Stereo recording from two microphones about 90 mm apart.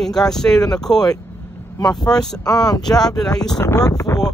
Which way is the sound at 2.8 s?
5° left (ahead or behind).